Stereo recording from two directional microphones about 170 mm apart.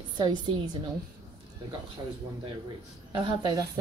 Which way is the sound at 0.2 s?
25° right (ahead or behind).